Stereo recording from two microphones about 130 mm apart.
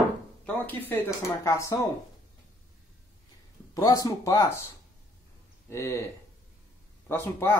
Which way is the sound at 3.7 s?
30° left (ahead or behind).